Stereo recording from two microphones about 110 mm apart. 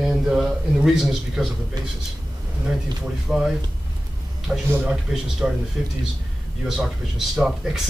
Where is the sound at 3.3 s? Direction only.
5° right (ahead or behind).